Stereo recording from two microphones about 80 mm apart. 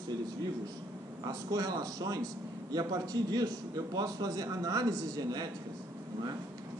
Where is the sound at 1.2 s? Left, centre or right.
Right.